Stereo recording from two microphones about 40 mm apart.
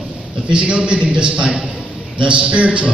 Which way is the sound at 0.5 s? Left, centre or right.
Right.